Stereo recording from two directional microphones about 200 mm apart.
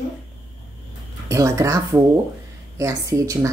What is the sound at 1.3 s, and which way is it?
A woman's voice, 15° right (ahead or behind).